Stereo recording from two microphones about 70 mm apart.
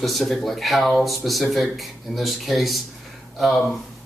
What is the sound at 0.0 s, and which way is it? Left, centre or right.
Speech, centre.